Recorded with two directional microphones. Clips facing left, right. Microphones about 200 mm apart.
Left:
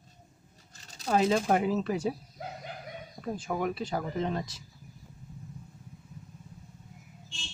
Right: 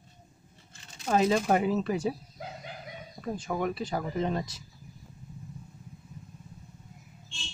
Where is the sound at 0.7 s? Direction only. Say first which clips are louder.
Even; 40° left (ahead or behind).